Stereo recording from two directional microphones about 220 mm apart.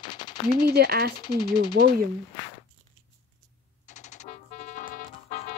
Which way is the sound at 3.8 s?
30° left (ahead or behind).